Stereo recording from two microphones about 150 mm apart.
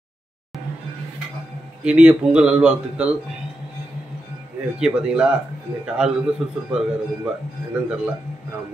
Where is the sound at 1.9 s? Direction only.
10° right (ahead or behind).